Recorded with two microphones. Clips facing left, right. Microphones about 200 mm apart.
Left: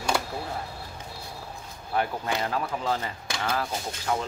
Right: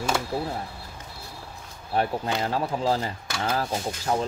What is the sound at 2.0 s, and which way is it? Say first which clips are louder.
Speech: right 2 dB; 30° right (ahead or behind).